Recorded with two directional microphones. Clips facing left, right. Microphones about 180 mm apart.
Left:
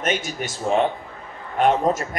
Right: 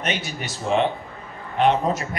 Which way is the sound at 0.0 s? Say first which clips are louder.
Left 3 dB; 45° left (ahead or behind).